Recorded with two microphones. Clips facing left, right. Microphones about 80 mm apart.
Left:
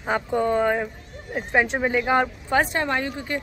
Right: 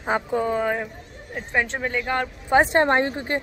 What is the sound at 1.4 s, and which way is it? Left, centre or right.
Speech, centre.